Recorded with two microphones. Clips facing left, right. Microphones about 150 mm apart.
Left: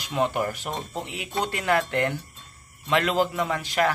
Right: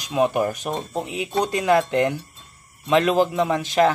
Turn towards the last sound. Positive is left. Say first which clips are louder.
# right 6 dB
turn(degrees=-20)  # may be behind; listen again after turning